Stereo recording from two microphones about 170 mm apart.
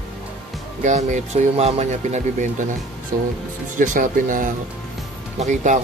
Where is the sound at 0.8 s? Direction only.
45° right (ahead or behind).